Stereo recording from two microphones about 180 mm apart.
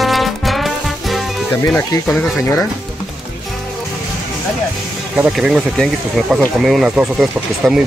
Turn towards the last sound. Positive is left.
turn(degrees=0)  # may be behind; listen again after turning